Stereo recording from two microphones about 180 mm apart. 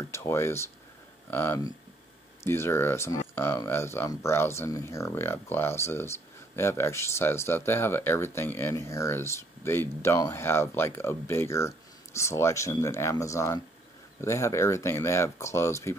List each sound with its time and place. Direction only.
0.0 s speech: 15° left (ahead or behind)